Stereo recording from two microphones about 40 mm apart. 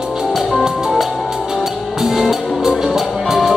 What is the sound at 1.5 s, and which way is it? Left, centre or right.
Music, centre.